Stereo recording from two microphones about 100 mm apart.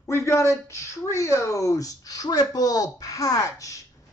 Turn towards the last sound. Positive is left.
turn(degrees=35)  # may be behind; listen again after turning